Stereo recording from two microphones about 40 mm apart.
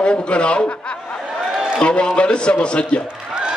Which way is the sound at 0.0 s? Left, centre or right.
Left.